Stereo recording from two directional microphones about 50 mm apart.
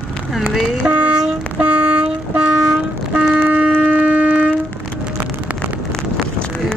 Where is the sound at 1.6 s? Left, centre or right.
Right.